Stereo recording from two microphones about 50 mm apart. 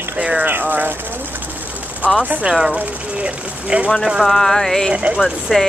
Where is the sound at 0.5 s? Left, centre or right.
Right.